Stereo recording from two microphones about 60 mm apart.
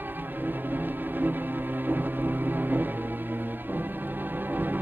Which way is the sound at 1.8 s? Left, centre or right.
Right.